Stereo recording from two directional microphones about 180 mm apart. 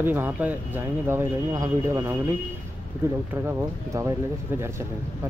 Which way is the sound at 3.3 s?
10° right (ahead or behind).